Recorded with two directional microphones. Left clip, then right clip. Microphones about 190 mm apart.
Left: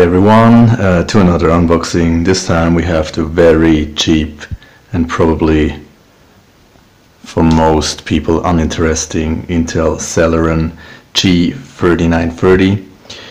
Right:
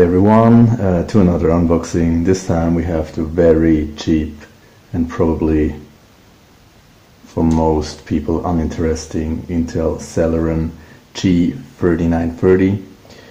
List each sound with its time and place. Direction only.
0.0 s speech: 15° left (ahead or behind)
1.8 s speech: 5° left (ahead or behind)
2.4 s speech: 20° left (ahead or behind)
7.3 s speech: 35° left (ahead or behind)
7.8 s speech: 15° left (ahead or behind)
11.1 s speech: 5° left (ahead or behind)